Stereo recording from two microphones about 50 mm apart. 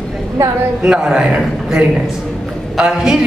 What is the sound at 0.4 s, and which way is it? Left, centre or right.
Speech, right.